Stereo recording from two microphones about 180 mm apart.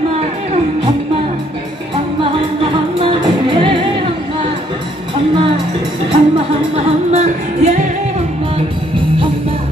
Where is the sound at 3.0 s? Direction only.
30° right (ahead or behind).